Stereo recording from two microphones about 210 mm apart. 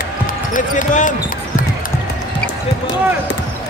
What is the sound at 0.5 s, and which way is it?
Basketball bounce, 35° left (ahead or behind).